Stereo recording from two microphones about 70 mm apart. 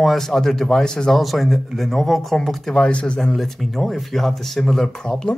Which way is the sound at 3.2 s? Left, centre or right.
Centre.